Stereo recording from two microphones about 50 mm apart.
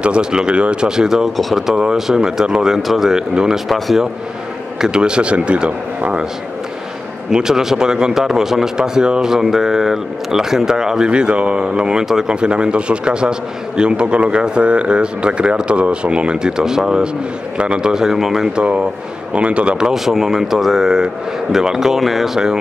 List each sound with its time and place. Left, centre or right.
0.0 s a man's voice: centre
1.8 s speech: centre
3.6 s a man's voice: centre
4.7 s speech: centre
7.2 s speech: centre
19.3 s speech: right
19.9 s speech: centre